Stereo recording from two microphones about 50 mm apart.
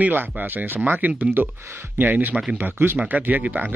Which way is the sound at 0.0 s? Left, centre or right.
Right.